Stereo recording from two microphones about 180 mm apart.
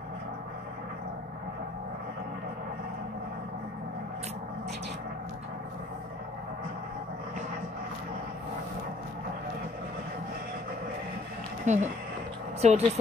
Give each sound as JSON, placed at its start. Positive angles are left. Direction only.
{"t": 11.6, "sound": "speech", "side_deg": -40}